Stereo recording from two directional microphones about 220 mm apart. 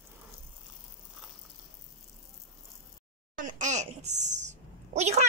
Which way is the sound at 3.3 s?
35° right (ahead or behind).